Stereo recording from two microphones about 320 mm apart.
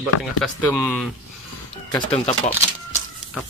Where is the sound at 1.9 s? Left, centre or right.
Centre.